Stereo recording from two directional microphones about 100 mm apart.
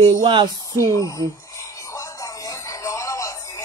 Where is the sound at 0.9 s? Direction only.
30° left (ahead or behind).